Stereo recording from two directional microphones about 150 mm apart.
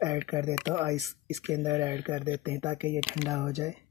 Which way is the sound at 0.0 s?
20° right (ahead or behind).